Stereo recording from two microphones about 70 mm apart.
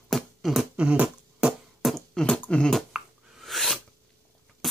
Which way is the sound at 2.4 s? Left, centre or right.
Centre.